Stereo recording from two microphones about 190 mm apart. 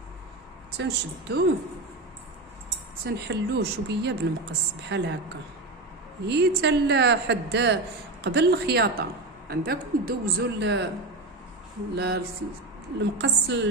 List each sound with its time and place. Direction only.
0.7 s a woman's voice: 60° right (ahead or behind)
3.1 s a woman's voice: 60° right (ahead or behind)
6.2 s a woman's voice: 60° right (ahead or behind)
11.9 s a woman's voice: 60° right (ahead or behind)